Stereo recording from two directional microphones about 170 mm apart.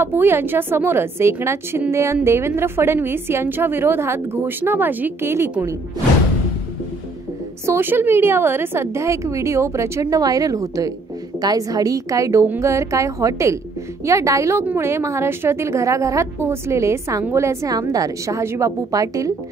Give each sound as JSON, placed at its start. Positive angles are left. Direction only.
{"t": 0.0, "sound": "a woman's voice", "side_deg": -15}
{"t": 7.6, "sound": "a woman's voice", "side_deg": -15}